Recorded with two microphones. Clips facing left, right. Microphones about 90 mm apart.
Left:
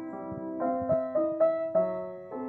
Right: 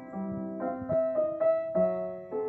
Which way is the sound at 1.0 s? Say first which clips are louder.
Right 3 dB; 15° left (ahead or behind).